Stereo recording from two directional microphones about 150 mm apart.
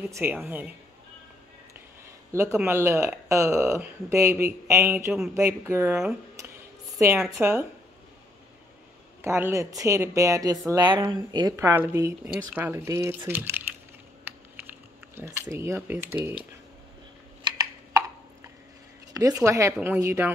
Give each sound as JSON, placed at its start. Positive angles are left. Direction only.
{"t": 0.1, "sound": "speech", "side_deg": -15}
{"t": 2.3, "sound": "speech", "side_deg": -15}
{"t": 7.0, "sound": "speech", "side_deg": -20}
{"t": 9.2, "sound": "a woman's voice", "side_deg": -15}
{"t": 11.5, "sound": "speech", "side_deg": -15}
{"t": 14.2, "sound": "typing", "side_deg": -15}
{"t": 17.4, "sound": "a sound", "side_deg": -30}
{"t": 19.1, "sound": "a woman's voice", "side_deg": -20}